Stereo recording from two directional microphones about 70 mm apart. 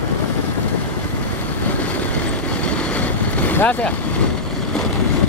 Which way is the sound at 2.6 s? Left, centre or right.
Centre.